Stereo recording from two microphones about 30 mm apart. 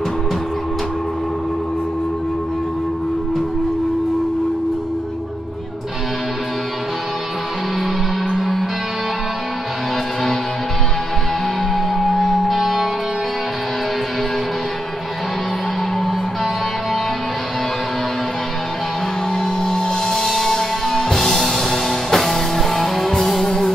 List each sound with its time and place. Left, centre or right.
8.3 s music: centre
11.7 s music: centre
19.3 s music: centre